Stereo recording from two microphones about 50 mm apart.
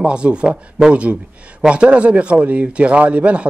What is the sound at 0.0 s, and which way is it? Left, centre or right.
Speech, right.